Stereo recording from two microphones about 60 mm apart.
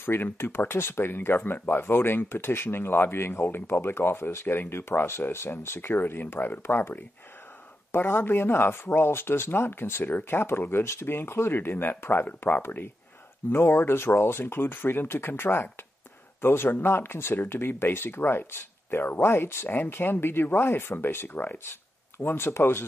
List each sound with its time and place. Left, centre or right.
0.0 s speech: left
7.9 s speech: left